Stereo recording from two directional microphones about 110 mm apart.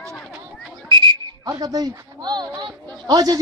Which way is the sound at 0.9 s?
45° right (ahead or behind).